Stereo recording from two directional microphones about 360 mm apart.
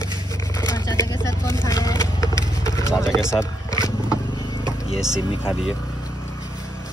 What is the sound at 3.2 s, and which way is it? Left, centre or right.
Speech, centre.